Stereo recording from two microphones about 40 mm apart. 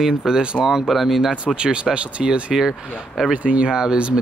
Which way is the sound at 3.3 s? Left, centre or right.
Right.